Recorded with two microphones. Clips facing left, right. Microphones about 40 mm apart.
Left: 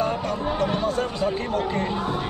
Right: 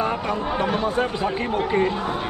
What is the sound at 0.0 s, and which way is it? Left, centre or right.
Speech, right.